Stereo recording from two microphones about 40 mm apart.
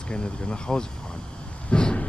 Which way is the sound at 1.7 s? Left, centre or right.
Left.